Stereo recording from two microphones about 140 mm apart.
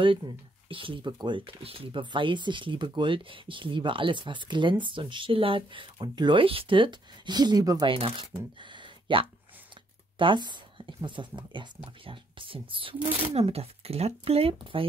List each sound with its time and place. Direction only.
0.7 s speech: 40° right (ahead or behind)
7.9 s speech: 40° right (ahead or behind)
8.5 s a sound: 35° right (ahead or behind)
10.1 s speech: 35° right (ahead or behind)